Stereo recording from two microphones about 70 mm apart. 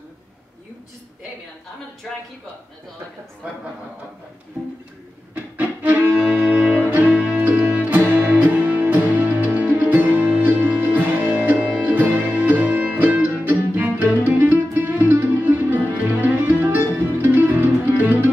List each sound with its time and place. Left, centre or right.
5.3 s music: right